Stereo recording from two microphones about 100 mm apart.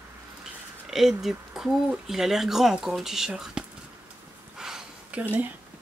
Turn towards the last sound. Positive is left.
turn(degrees=-15)  # may be behind; listen again after turning